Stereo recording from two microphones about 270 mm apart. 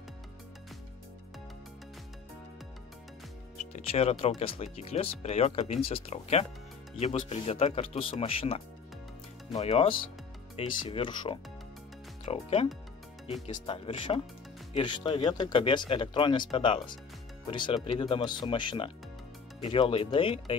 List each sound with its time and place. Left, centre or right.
3.5 s speech: left
13.7 s speech: centre